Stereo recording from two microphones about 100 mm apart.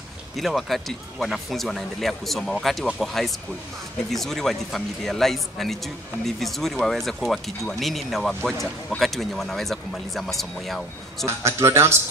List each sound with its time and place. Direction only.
0.4 s speech: centre (ahead or behind)
11.2 s a man's voice: 25° right (ahead or behind)